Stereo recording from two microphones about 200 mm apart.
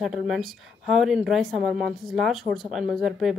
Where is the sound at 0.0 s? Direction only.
Centre (ahead or behind).